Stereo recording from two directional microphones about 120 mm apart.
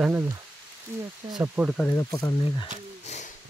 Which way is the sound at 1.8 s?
30° left (ahead or behind).